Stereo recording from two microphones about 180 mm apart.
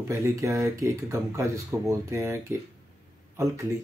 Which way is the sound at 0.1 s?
15° right (ahead or behind).